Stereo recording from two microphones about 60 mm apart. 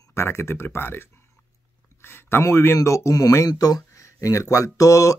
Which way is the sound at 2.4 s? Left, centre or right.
Left.